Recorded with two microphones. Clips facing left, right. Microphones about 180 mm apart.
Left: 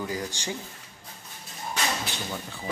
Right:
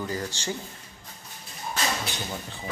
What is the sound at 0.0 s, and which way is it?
Speech, 10° left (ahead or behind).